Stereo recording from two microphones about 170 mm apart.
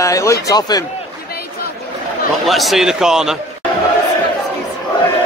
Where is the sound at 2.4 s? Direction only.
Centre (ahead or behind).